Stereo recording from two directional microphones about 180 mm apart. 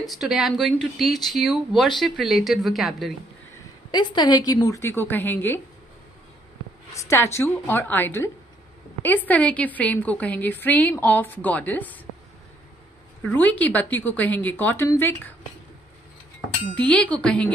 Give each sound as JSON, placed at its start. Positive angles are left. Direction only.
{"t": 0.0, "sound": "speech", "side_deg": 0}
{"t": 3.9, "sound": "a woman's voice", "side_deg": 25}
{"t": 6.9, "sound": "a woman's voice", "side_deg": 15}
{"t": 13.2, "sound": "a woman's voice", "side_deg": 10}
{"t": 16.7, "sound": "a woman's voice", "side_deg": 5}